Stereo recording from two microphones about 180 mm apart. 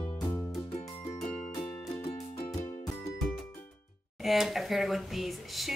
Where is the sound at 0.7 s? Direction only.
40° left (ahead or behind).